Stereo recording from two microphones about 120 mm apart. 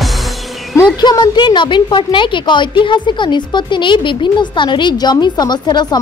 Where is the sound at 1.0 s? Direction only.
35° left (ahead or behind).